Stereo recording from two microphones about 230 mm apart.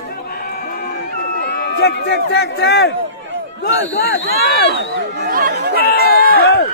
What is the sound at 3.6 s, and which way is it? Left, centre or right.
Speech, left.